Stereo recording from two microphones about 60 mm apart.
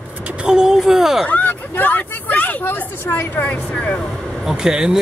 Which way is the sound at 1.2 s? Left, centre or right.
Left.